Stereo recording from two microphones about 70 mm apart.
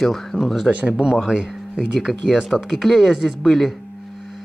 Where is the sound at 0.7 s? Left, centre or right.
Centre.